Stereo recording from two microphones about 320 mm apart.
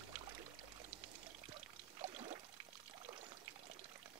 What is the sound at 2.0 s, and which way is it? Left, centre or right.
Pour, centre.